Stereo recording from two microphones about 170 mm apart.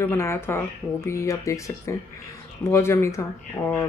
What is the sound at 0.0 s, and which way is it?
Speech, 15° left (ahead or behind).